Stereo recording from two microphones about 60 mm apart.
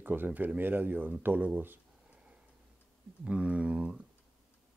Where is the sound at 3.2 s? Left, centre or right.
Centre.